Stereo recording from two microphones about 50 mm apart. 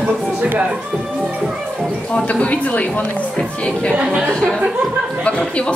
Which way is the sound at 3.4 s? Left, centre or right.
Centre.